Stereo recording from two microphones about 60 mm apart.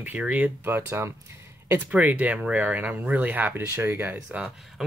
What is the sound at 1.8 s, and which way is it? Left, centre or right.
Speech, right.